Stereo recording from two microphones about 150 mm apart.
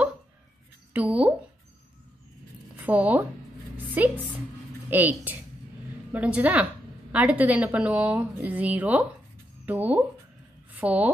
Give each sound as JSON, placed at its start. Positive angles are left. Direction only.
{"t": 0.9, "sound": "speech", "side_deg": -10}
{"t": 2.8, "sound": "speech", "side_deg": -10}
{"t": 3.7, "sound": "a sound", "side_deg": -10}
{"t": 4.8, "sound": "a woman's voice", "side_deg": -10}